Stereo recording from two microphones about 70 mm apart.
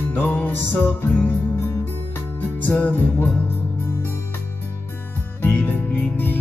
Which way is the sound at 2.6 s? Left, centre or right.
Left.